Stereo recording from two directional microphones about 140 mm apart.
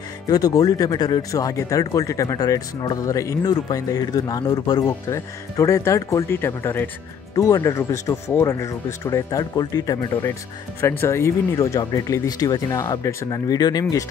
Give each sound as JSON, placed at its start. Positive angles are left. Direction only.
{"t": 0.3, "sound": "speech", "side_deg": 25}
{"t": 10.8, "sound": "speech", "side_deg": 15}